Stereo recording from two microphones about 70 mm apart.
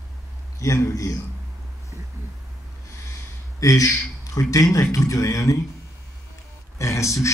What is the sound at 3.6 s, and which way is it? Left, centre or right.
Speech, left.